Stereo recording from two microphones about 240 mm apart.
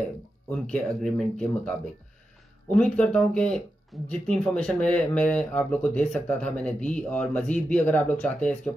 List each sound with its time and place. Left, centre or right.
0.5 s speech: centre